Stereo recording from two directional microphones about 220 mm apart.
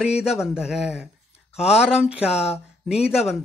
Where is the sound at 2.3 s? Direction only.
30° left (ahead or behind).